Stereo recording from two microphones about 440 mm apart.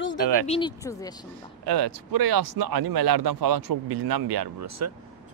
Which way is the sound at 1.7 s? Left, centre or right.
Right.